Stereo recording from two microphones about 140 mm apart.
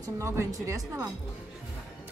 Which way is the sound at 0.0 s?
25° right (ahead or behind).